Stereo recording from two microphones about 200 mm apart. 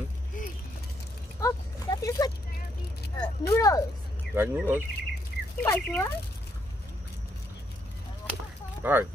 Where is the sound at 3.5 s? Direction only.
15° left (ahead or behind).